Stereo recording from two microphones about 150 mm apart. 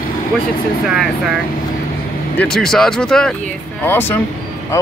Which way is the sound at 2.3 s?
5° left (ahead or behind).